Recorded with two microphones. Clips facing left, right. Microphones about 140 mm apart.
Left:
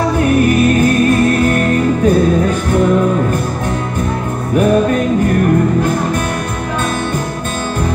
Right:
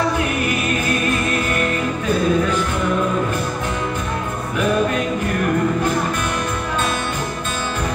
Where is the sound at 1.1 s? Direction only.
45° left (ahead or behind).